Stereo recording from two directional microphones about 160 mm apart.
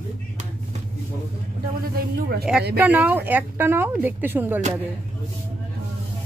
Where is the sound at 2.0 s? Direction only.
75° right (ahead or behind).